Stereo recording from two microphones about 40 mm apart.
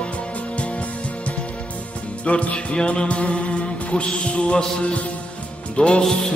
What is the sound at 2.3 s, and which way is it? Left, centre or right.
Music, left.